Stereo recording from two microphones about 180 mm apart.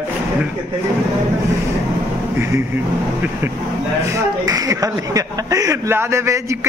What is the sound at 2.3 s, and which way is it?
A man's voice, 15° right (ahead or behind).